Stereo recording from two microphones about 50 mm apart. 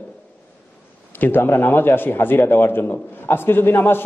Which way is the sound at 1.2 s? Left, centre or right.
Left.